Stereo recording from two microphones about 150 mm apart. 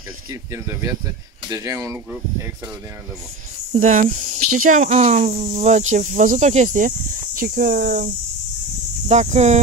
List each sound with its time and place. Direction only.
0.3 s speech: 20° right (ahead or behind)
3.7 s speech: 60° right (ahead or behind)
7.3 s speech: 70° right (ahead or behind)
9.1 s speech: 50° right (ahead or behind)